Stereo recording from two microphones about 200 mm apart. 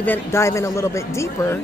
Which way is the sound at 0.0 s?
10° left (ahead or behind).